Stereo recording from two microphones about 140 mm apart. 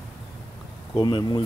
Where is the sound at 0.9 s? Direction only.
35° left (ahead or behind).